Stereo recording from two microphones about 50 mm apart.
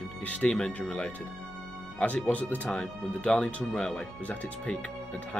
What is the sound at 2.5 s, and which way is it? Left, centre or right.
Speech, left.